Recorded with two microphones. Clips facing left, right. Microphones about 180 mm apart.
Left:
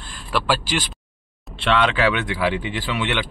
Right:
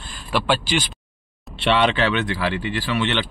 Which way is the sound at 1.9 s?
15° left (ahead or behind).